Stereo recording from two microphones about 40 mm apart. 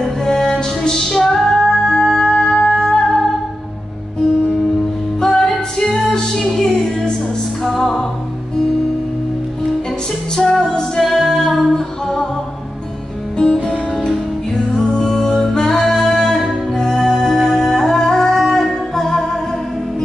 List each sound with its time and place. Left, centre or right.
0.0 s music: centre
5.2 s music: centre
10.3 s music: centre
13.4 s music: centre
15.0 s music: centre